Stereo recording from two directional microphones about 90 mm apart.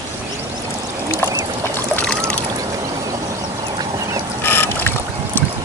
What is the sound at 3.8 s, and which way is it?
Duck, 45° right (ahead or behind).